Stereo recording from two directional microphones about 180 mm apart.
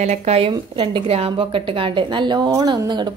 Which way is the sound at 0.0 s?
40° right (ahead or behind).